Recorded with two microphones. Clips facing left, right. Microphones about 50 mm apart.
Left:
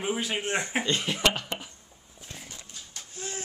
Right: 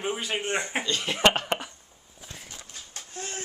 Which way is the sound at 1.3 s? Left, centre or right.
Right.